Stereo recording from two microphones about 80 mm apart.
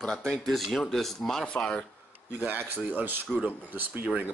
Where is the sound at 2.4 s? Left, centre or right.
Right.